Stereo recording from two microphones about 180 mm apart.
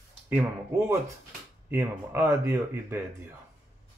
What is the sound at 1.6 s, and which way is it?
Speech, 10° right (ahead or behind).